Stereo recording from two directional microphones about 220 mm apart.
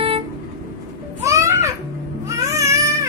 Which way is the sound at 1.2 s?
15° right (ahead or behind).